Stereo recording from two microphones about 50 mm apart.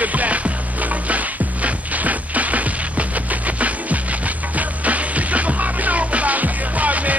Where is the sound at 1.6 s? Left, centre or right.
Right.